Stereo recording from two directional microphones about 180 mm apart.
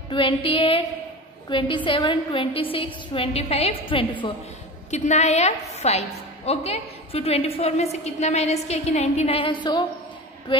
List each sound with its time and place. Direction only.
0.1 s a woman's voice: 30° left (ahead or behind)